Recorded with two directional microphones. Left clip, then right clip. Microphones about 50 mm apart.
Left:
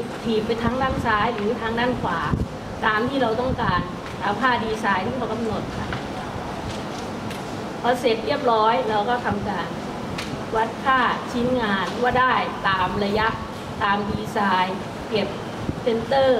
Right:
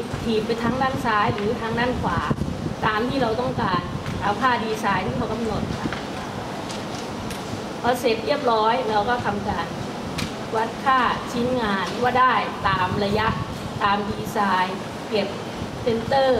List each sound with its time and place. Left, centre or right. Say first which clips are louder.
0.7 s a woman's voice: even; right
7.8 s a woman's voice: left 1 dB; right
16.1 s a woman's voice: left 1 dB; right